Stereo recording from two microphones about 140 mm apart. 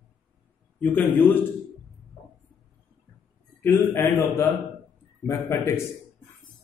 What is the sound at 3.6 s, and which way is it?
A man's voice, 15° left (ahead or behind).